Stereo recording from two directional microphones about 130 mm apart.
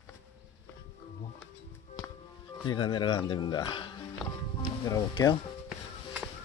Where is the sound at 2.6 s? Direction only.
35° left (ahead or behind).